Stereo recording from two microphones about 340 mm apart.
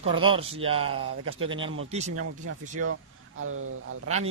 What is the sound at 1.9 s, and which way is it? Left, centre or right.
Speech, centre.